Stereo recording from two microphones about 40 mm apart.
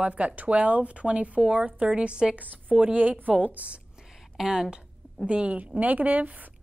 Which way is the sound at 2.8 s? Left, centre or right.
Right.